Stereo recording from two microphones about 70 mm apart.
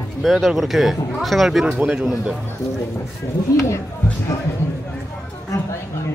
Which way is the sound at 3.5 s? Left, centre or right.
Left.